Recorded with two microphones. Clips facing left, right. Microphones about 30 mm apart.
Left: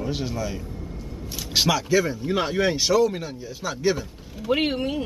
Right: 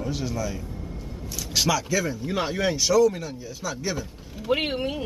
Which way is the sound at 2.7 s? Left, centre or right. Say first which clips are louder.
Right 4 dB; left.